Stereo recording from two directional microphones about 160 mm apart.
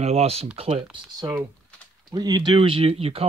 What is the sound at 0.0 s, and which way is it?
Speech, 40° right (ahead or behind).